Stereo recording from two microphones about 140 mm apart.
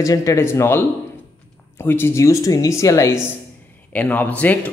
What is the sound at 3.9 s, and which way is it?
Speech, 10° left (ahead or behind).